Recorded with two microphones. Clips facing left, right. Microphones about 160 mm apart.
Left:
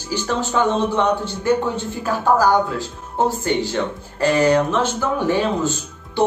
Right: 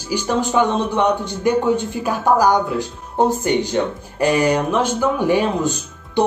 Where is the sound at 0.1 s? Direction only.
15° right (ahead or behind).